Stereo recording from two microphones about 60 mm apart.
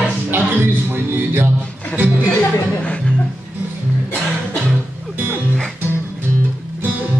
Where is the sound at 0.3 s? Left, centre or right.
Right.